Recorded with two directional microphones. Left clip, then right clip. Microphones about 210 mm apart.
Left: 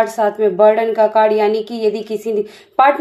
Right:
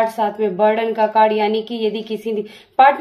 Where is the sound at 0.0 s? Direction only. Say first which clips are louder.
Left 3 dB; 20° left (ahead or behind).